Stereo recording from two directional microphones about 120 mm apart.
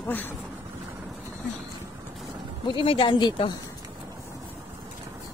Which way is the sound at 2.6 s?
45° left (ahead or behind).